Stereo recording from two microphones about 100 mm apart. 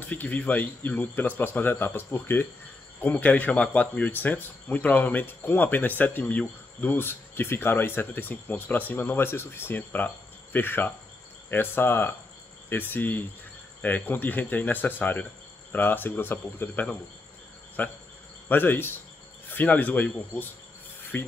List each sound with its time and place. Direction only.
0.0 s speech: 15° left (ahead or behind)